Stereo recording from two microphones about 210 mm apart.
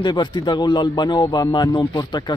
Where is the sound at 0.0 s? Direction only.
20° left (ahead or behind).